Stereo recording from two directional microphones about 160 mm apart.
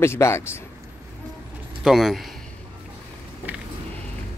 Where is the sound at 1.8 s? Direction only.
5° right (ahead or behind).